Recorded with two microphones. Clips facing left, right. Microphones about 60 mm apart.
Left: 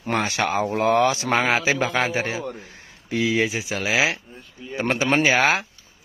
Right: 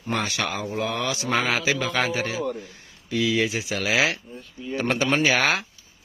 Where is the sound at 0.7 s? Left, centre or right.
Left.